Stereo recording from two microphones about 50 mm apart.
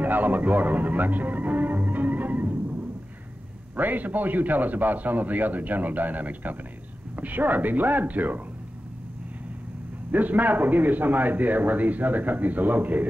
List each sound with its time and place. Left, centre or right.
0.0 s music: right
3.7 s a man's voice: right
10.1 s a man's voice: right